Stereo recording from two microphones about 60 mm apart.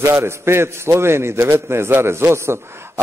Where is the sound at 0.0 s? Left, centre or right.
Right.